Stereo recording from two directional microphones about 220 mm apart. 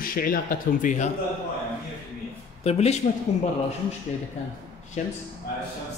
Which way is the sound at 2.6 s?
30° left (ahead or behind).